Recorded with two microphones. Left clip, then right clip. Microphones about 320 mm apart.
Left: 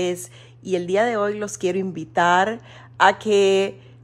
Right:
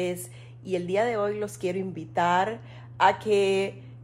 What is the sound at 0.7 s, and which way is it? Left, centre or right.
Speech, left.